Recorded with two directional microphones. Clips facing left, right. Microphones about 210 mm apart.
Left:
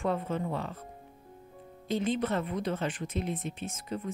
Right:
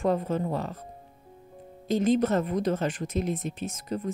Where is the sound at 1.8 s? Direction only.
40° right (ahead or behind).